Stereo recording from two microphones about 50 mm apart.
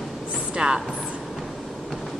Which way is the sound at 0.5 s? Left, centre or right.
Centre.